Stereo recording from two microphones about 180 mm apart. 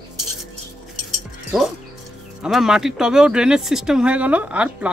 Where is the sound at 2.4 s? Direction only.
5° right (ahead or behind).